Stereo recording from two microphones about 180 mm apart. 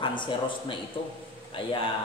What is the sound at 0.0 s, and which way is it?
A man's voice, 25° left (ahead or behind).